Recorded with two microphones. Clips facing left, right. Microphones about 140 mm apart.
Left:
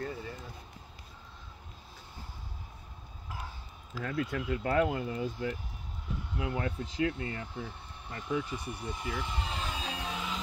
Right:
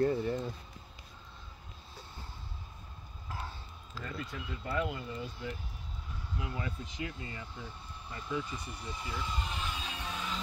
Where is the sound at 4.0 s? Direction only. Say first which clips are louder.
Left 8 dB; 90° left.